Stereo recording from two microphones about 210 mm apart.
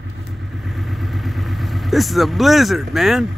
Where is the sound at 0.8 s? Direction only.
Centre (ahead or behind).